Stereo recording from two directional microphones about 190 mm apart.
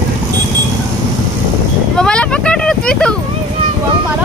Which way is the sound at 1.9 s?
5° left (ahead or behind).